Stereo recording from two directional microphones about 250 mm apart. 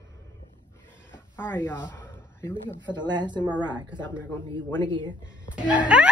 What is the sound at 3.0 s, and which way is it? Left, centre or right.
Speech, centre.